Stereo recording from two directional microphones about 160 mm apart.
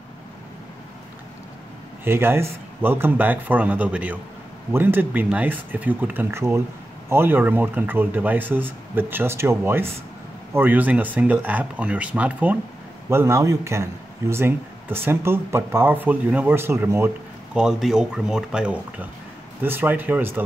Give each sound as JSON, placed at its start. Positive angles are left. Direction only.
{"t": 2.0, "sound": "speech", "side_deg": -15}
{"t": 17.6, "sound": "speech", "side_deg": -5}